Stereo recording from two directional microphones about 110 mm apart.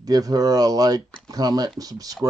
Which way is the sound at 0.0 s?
35° right (ahead or behind).